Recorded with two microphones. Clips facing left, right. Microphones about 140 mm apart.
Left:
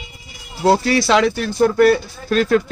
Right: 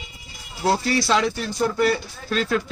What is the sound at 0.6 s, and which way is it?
Speech, 90° left.